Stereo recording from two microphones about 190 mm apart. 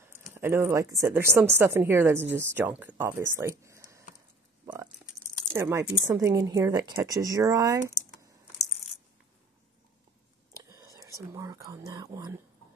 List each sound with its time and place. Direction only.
0.0 s speech: 10° right (ahead or behind)
5.5 s speech: 15° right (ahead or behind)
10.6 s whispering: 20° right (ahead or behind)
11.3 s speech: 15° right (ahead or behind)